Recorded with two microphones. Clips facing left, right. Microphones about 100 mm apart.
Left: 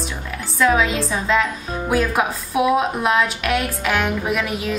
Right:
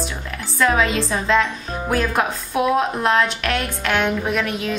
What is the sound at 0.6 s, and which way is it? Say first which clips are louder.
A woman's voice: left 1 dB; centre (ahead or behind).